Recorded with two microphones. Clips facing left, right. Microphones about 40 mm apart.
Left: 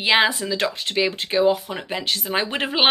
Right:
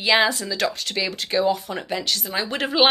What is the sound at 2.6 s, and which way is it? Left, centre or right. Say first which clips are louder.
Speech: right 4 dB; left.